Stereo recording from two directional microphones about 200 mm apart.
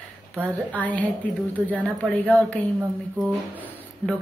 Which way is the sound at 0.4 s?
5° left (ahead or behind).